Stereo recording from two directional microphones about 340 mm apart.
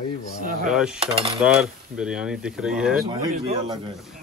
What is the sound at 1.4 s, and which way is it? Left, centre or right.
Speech, centre.